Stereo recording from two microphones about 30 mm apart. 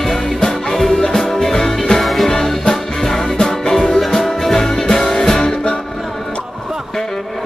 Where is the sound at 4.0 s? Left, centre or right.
Centre.